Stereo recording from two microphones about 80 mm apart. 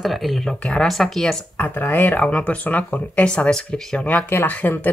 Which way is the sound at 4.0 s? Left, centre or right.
Centre.